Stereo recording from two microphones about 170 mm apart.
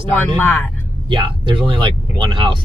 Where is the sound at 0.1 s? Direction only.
10° left (ahead or behind).